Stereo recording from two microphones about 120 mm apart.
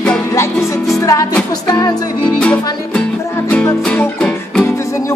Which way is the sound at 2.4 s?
10° left (ahead or behind).